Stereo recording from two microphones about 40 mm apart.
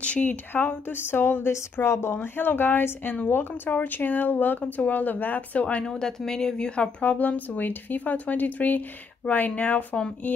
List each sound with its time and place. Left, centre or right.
0.0 s speech: left
0.6 s a woman's voice: left
2.3 s a woman's voice: left
5.9 s speech: centre
7.0 s speech: left